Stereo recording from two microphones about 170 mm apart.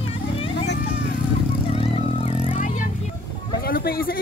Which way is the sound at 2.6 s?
50° left (ahead or behind).